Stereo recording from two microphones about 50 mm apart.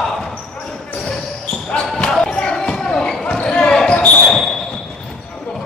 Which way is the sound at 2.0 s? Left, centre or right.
Centre.